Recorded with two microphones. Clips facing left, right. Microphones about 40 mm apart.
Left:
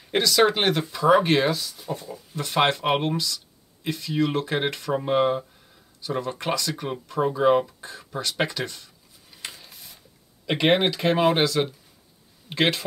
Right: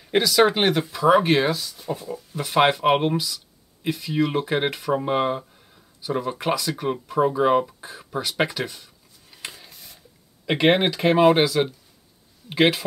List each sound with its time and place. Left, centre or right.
0.1 s speech: centre